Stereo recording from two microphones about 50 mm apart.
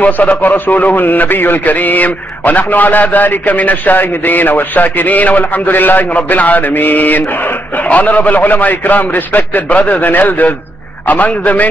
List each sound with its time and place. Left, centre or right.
0.0 s a man's voice: left